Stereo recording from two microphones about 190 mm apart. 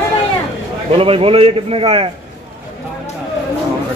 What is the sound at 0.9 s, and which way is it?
A man's voice, 30° right (ahead or behind).